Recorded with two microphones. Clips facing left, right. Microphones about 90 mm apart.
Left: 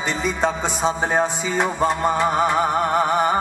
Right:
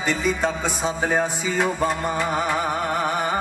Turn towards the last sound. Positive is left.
turn(degrees=25)  # may be behind; listen again after turning